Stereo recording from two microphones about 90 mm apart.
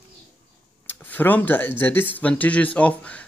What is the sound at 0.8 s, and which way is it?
Speech, 20° left (ahead or behind).